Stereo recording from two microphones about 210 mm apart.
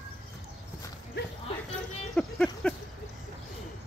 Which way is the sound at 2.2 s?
5° left (ahead or behind).